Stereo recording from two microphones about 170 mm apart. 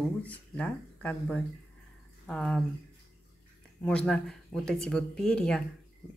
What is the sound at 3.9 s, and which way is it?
Speech, 5° left (ahead or behind).